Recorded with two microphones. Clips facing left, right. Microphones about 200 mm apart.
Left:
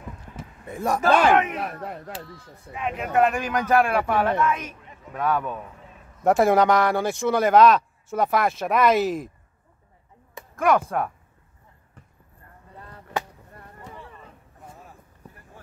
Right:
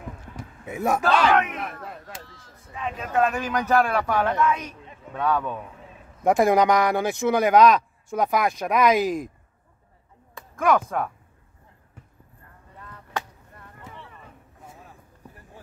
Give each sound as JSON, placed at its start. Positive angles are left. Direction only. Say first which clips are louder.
{"t": 0.7, "sound": "speech", "louder": "right 1 dB", "side_deg": -5}
{"t": 1.5, "sound": "speech", "louder": "left 3 dB", "side_deg": 35}
{"t": 2.7, "sound": "a man's voice", "louder": "left 2 dB", "side_deg": 15}
{"t": 10.3, "sound": "speech", "louder": "left 1 dB", "side_deg": 10}